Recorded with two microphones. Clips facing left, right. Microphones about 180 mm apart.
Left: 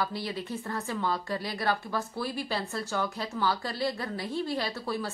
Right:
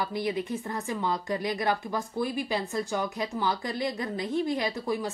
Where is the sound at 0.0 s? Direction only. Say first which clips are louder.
Right 3 dB; 15° right (ahead or behind).